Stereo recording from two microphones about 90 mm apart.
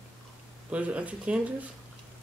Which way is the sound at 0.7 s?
15° right (ahead or behind).